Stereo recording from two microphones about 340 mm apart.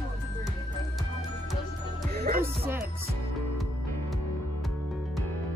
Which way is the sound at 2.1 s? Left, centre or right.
Right.